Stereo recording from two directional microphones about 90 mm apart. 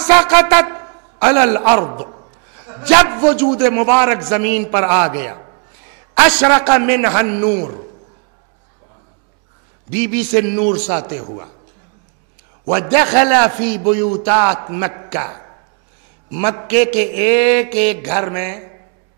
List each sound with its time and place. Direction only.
0.0 s a man's voice: 20° right (ahead or behind)
9.9 s mantra: 15° right (ahead or behind)
12.6 s a man's voice: 25° right (ahead or behind)
14.3 s mantra: 15° right (ahead or behind)
14.6 s a man's voice: 20° right (ahead or behind)
16.3 s mantra: 20° right (ahead or behind)